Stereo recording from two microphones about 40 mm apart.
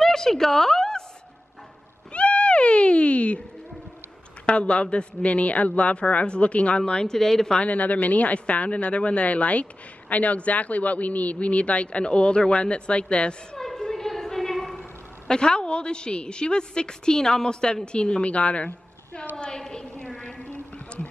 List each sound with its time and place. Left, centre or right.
0.0 s a sound: centre
2.1 s cat: left
4.5 s speech: left
6.9 s speech: centre
7.5 s speech: left
13.6 s a sound: centre
15.2 s a woman's voice: left
19.3 s a woman's voice: centre
20.2 s a sound: left